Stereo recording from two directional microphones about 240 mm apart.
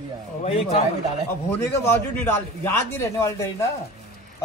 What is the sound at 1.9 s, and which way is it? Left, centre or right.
A man's voice, centre.